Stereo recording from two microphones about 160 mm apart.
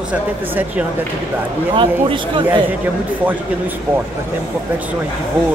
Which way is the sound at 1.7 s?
30° right (ahead or behind).